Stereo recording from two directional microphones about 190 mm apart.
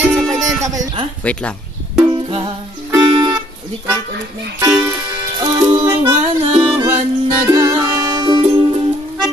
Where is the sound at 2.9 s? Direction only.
20° right (ahead or behind).